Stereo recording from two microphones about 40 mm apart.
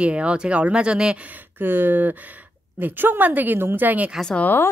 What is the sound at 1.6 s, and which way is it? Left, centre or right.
A woman's voice, right.